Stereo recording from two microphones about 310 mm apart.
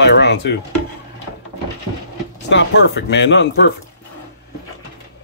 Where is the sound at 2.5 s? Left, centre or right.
Left.